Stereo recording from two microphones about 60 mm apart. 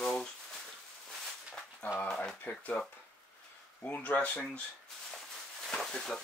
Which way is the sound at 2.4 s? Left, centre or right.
Left.